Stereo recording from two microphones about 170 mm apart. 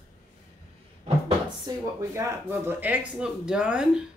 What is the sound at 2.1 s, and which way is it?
Speech, 15° right (ahead or behind).